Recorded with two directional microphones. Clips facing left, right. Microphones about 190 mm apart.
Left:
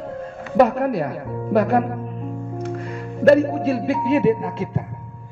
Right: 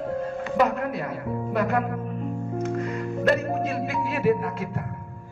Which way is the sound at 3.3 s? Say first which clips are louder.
Left 7 dB; 30° left (ahead or behind).